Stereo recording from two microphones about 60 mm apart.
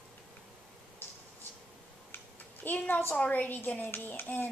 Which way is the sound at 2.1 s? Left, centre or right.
Left.